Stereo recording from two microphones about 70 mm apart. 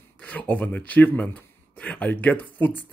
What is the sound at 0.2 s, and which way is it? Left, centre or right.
A man's voice, left.